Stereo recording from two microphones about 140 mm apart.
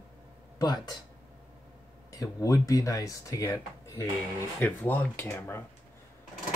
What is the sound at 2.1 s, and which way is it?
Speech, 25° left (ahead or behind).